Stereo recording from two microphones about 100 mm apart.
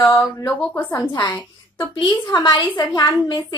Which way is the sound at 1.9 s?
55° left (ahead or behind).